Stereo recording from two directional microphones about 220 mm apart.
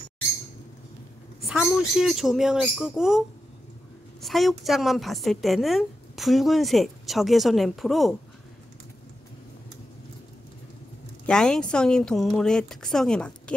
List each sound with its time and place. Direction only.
2.0 s a woman's voice: centre (ahead or behind)
11.2 s a woman's voice: 5° left (ahead or behind)